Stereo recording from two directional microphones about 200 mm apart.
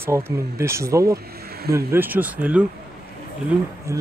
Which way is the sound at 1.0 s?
50° right (ahead or behind).